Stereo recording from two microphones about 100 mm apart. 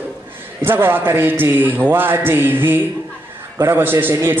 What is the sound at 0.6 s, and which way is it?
A man's voice, 20° right (ahead or behind).